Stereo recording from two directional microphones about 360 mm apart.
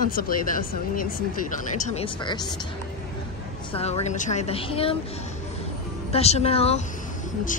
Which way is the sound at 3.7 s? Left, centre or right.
Centre.